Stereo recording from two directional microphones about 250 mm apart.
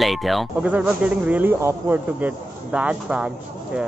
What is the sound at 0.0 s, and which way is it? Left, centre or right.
Speech, centre.